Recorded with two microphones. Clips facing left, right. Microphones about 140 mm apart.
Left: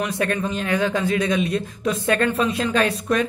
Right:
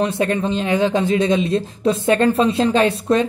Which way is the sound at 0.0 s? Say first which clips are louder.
Right 4 dB; 25° right (ahead or behind).